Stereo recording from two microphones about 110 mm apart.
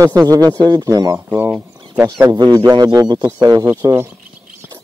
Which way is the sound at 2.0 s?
35° right (ahead or behind).